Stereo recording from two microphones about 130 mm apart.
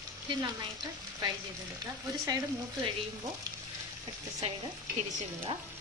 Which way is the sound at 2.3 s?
30° right (ahead or behind).